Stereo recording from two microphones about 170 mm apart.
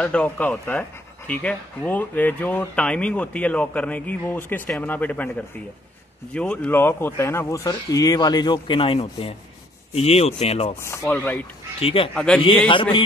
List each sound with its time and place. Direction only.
0.0 s speech: 5° left (ahead or behind); by 10.7 s 40° left (ahead or behind)
10.8 s speech: 15° left (ahead or behind)
11.8 s speech: 35° left (ahead or behind)
12.3 s a man's voice: 5° left (ahead or behind)
12.6 s speech: 30° left (ahead or behind)